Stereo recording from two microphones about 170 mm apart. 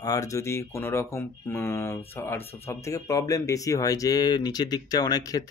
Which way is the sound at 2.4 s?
35° left (ahead or behind).